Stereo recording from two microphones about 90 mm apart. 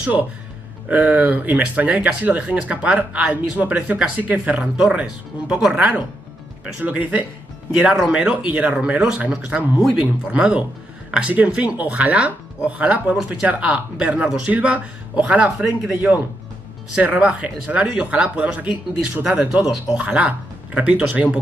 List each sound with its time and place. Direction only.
0.8 s speech: 15° right (ahead or behind)
4.7 s speech: 5° right (ahead or behind)
7.8 s speech: centre (ahead or behind)
8.1 s speech: 10° right (ahead or behind)